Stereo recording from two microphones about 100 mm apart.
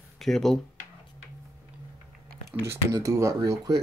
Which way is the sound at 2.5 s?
25° right (ahead or behind).